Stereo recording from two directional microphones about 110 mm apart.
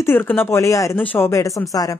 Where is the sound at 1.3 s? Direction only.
30° left (ahead or behind).